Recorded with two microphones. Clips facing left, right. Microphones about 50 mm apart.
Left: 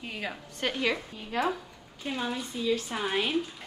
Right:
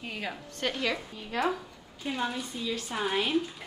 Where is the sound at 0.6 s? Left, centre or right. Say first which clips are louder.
Left 2 dB; left.